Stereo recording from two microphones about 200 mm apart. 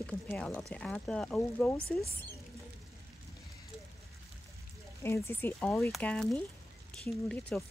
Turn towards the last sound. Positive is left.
turn(degrees=5)  # may be behind; listen again after turning